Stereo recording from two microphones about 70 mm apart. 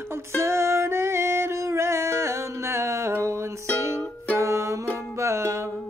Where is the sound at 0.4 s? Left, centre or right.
Right.